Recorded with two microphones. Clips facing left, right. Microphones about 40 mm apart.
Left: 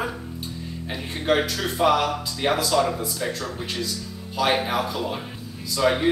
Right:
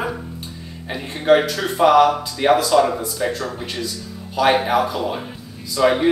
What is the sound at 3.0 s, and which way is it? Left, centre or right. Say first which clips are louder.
Speech: right 5 dB; centre.